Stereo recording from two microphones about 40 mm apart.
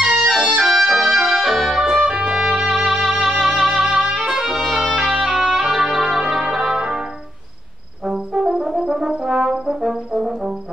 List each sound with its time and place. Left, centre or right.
0.0 s music: right
0.7 s trumpet: centre
2.0 s music: right
2.3 s violin: centre
3.2 s music: centre
4.9 s music: centre
8.0 s brass instrument: centre